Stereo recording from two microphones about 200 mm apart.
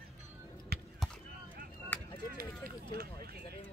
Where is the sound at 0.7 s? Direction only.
50° right (ahead or behind).